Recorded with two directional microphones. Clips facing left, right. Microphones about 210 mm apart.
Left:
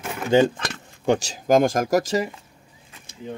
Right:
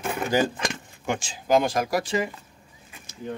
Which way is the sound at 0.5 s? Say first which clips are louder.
Right 2 dB; 10° right (ahead or behind).